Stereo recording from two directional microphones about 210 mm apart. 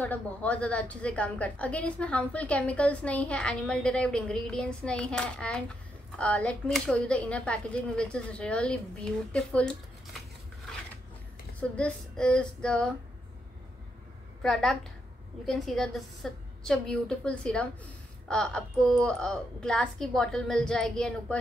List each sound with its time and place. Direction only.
0.0 s a woman's voice: 5° left (ahead or behind)
11.7 s a woman's voice: 5° left (ahead or behind)
14.4 s a woman's voice: centre (ahead or behind)